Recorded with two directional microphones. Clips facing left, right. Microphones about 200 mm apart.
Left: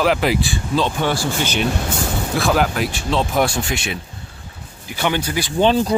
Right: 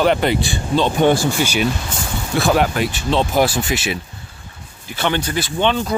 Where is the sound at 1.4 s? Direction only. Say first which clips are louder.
Right 1 dB; 10° right (ahead or behind).